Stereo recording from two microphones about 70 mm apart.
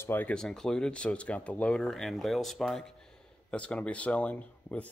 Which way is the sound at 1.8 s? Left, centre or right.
Centre.